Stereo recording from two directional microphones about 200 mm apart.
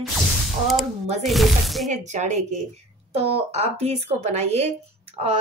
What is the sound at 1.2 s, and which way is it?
Speech, centre (ahead or behind).